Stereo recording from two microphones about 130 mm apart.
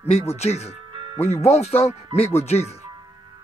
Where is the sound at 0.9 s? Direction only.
40° right (ahead or behind).